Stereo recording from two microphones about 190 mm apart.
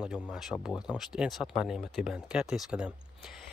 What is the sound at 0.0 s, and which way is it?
Speech, 5° right (ahead or behind).